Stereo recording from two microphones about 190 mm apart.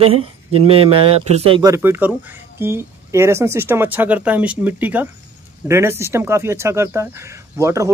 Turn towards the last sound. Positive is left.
turn(degrees=-15)  # may be behind; listen again after turning